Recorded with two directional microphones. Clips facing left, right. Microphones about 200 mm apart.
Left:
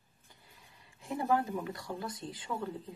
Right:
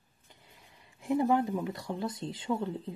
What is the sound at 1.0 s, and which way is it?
Speech, 20° right (ahead or behind).